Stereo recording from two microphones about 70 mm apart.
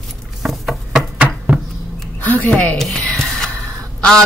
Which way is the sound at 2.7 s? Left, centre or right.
Centre.